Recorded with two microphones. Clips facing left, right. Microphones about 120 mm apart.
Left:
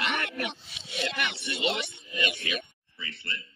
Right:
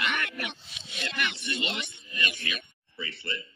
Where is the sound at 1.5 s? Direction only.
10° left (ahead or behind).